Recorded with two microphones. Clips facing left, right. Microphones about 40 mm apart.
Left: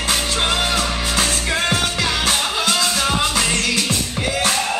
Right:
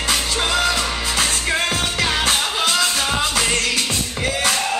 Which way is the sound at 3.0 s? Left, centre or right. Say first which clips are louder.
Left 1 dB; left.